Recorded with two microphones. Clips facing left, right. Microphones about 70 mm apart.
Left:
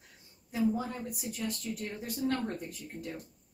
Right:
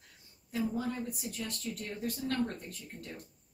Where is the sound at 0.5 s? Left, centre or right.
Centre.